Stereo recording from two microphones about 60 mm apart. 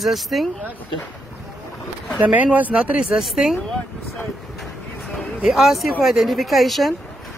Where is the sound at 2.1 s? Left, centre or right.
Right.